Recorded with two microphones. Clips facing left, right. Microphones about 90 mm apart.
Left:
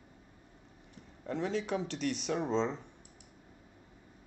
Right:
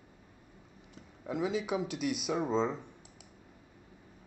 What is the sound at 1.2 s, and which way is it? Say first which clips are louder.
Speech: right 1 dB; 10° right (ahead or behind).